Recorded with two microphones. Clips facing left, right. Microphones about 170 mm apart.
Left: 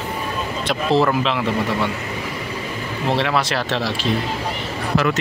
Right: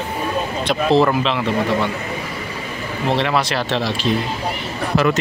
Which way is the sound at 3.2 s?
5° left (ahead or behind).